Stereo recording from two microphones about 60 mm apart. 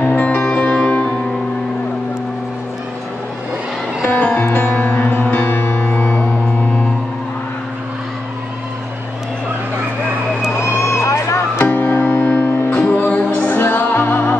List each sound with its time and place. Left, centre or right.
0.0 s music: left
4.0 s music: left
5.1 s music: left
10.6 s vehicle: left
11.5 s music: left